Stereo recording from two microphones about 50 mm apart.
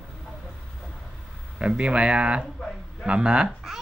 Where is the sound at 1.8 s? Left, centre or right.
Right.